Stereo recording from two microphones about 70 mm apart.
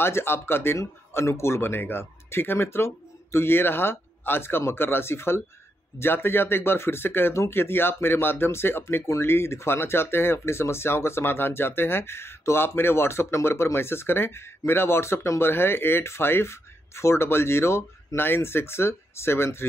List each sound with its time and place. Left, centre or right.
0.0 s speech: left